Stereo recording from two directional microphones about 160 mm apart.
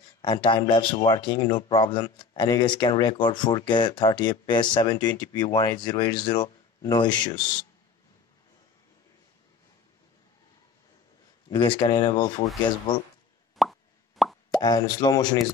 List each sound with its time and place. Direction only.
0.2 s speech: 30° left (ahead or behind)
11.5 s speech: 30° left (ahead or behind)
13.6 s plop: centre (ahead or behind)
14.6 s speech: 25° left (ahead or behind)